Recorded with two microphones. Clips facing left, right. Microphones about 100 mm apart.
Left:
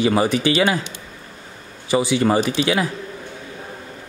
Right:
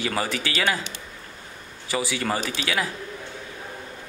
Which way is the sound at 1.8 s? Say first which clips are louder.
Left 9 dB; 20° left (ahead or behind).